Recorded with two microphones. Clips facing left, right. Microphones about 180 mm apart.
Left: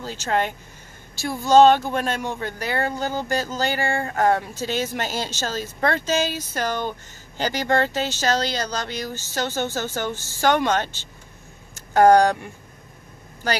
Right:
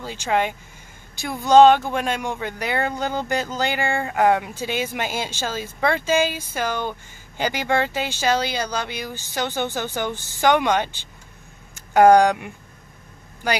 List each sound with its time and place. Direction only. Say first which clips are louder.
0.0 s speech: right 1 dB; 15° right (ahead or behind)